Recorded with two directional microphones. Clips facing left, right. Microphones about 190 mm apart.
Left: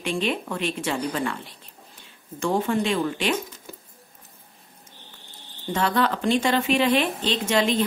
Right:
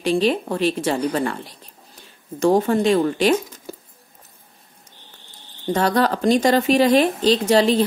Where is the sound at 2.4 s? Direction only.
40° right (ahead or behind).